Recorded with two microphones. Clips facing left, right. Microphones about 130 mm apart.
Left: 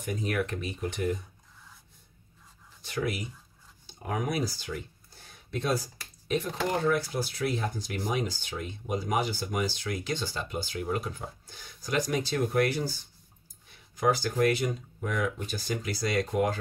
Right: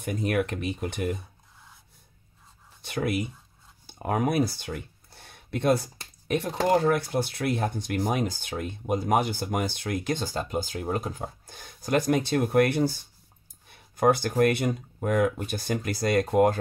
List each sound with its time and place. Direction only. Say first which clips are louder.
0.0 s speech: right 4 dB; 60° right (ahead or behind)
2.8 s speech: right 4 dB; 60° right (ahead or behind)
13.9 s speech: right 4 dB; 55° right (ahead or behind)